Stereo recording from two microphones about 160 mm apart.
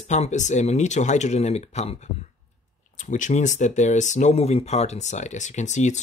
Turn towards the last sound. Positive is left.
turn(degrees=45)  # may be behind; listen again after turning